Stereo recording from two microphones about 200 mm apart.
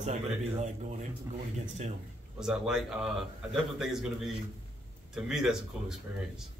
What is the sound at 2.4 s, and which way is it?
A man's voice, 5° right (ahead or behind).